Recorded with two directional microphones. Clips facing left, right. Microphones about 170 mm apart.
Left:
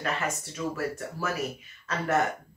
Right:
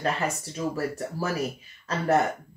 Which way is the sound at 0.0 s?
35° right (ahead or behind).